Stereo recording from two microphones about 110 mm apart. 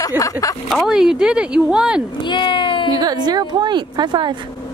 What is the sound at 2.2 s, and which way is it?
Speech, 45° left (ahead or behind).